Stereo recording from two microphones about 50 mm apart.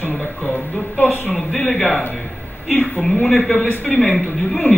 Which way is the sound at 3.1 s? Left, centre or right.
Left.